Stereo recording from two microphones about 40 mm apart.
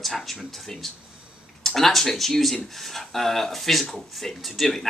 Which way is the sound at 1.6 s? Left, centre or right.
Centre.